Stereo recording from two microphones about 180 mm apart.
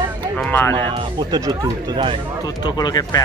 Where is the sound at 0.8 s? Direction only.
25° right (ahead or behind).